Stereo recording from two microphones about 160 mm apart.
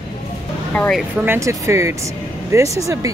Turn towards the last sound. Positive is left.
turn(degrees=-20)  # may be behind; listen again after turning